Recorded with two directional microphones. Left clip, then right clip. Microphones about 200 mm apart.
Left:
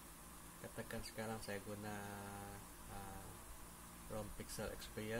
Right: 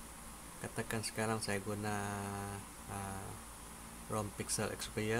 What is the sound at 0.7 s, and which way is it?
Speech, 30° right (ahead or behind).